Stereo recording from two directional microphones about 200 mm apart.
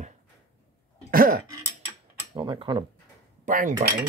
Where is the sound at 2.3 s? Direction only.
20° right (ahead or behind).